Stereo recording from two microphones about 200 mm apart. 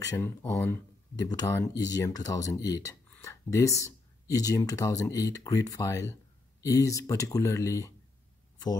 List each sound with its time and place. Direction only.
0.0 s speech: 15° left (ahead or behind)